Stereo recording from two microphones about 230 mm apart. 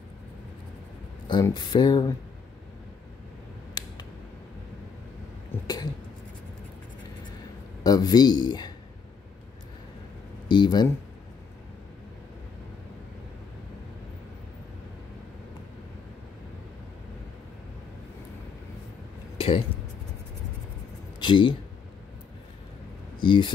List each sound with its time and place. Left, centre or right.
1.2 s speech: centre
5.5 s cough: centre
7.8 s speech: centre
10.5 s speech: centre
19.3 s a sound: left
21.2 s speech: left
23.2 s speech: left